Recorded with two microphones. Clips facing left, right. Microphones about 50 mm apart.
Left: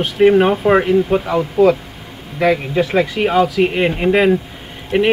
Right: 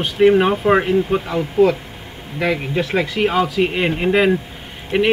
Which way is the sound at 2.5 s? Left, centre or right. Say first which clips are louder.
Left 4 dB; centre.